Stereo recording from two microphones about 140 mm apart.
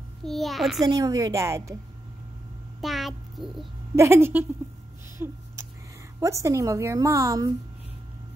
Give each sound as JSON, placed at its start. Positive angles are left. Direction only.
{"t": 0.2, "sound": "a child's voice", "side_deg": 0}
{"t": 0.8, "sound": "a woman's voice", "side_deg": -25}
{"t": 2.8, "sound": "a sound", "side_deg": 0}
{"t": 3.9, "sound": "a woman's voice", "side_deg": -20}